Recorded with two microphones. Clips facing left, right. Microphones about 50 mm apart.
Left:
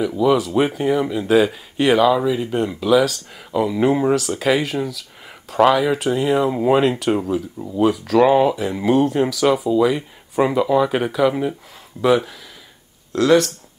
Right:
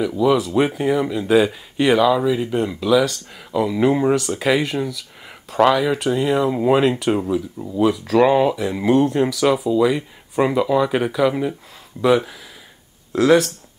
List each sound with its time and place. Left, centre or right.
0.0 s speech: centre
7.6 s speech: right
8.0 s speech: centre